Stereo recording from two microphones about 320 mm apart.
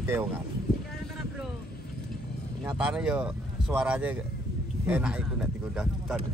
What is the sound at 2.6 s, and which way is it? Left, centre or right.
Speech, centre.